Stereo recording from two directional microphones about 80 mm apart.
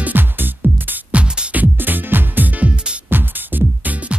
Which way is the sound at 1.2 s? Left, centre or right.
Centre.